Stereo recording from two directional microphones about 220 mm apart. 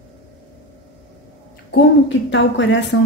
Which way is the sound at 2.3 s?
55° left (ahead or behind).